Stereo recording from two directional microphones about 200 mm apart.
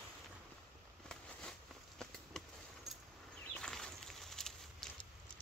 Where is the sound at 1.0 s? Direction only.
5° left (ahead or behind).